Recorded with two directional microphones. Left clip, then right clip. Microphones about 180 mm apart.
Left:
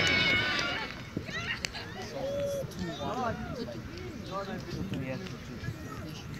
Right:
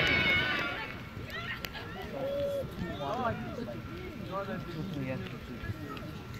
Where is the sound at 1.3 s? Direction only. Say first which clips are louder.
Left 3 dB; 50° right (ahead or behind).